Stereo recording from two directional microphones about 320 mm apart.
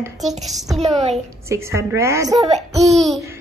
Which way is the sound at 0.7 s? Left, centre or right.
Centre.